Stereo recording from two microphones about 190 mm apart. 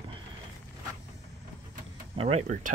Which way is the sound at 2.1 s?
35° right (ahead or behind).